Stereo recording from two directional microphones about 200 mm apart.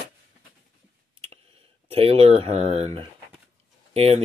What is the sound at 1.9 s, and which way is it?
Speech, 30° right (ahead or behind).